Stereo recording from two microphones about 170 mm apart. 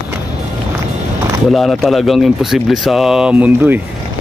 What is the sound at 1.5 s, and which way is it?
Speech, centre (ahead or behind).